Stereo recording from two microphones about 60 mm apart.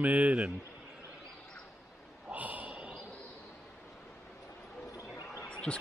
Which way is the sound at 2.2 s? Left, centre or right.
Right.